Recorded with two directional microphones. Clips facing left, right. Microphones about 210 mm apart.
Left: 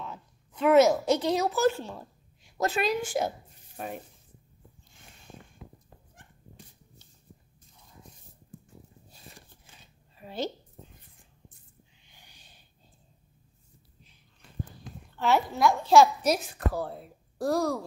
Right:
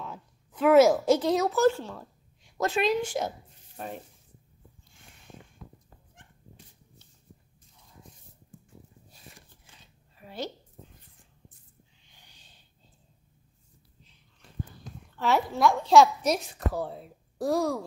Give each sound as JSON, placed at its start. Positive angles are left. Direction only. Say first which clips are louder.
{"t": 0.0, "sound": "a woman's voice", "louder": "even", "side_deg": -5}
{"t": 1.8, "sound": "speech", "louder": "even", "side_deg": 15}
{"t": 2.6, "sound": "a woman's voice", "louder": "right 2 dB", "side_deg": 5}
{"t": 3.2, "sound": "a sound", "louder": "left 2 dB", "side_deg": 10}
{"t": 12.3, "sound": "a sound", "louder": "left 2 dB", "side_deg": 10}
{"t": 15.1, "sound": "a woman's voice", "louder": "even", "side_deg": 0}